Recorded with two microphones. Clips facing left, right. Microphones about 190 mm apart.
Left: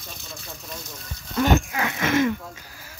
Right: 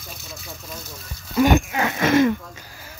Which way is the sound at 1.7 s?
35° right (ahead or behind).